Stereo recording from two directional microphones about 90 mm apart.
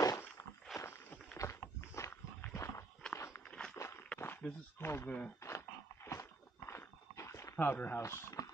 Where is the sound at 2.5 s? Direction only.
35° left (ahead or behind).